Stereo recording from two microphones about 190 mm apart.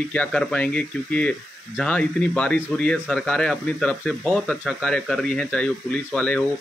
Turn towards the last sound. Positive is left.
turn(degrees=5)  # may be behind; listen again after turning